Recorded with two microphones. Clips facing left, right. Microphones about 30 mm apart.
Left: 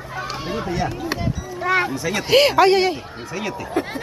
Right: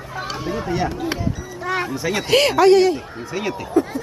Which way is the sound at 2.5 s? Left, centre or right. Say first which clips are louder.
Right 2 dB; centre.